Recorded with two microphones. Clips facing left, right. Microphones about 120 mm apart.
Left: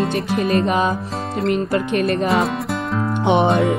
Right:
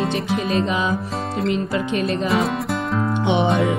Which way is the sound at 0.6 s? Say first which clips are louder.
Left 3 dB; 55° left (ahead or behind).